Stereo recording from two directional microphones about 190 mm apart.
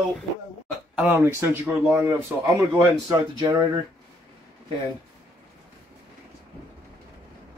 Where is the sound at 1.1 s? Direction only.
15° right (ahead or behind).